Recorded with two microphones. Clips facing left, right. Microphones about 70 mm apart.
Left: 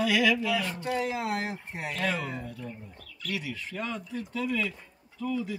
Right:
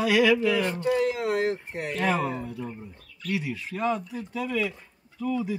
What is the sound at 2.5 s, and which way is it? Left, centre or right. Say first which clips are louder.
Speech: right 5 dB; right.